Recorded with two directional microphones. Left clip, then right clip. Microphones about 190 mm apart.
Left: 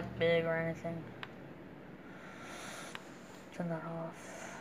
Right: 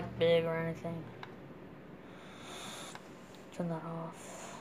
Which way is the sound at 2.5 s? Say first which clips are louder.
Right 2 dB; 15° right (ahead or behind).